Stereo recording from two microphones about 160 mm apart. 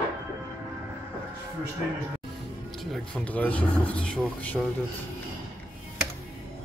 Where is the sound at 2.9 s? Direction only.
5° left (ahead or behind).